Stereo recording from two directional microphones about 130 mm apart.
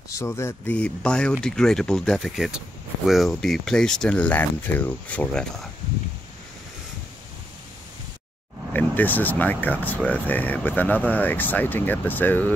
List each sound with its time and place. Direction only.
0.2 s speech: 20° left (ahead or behind)
0.7 s speech: 10° left (ahead or behind)
8.7 s speech: 15° left (ahead or behind)